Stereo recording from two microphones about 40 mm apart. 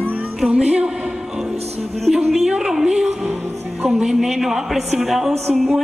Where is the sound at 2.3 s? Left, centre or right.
Centre.